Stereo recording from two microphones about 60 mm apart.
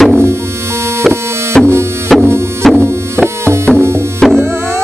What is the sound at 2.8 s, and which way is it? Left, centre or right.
Music, right.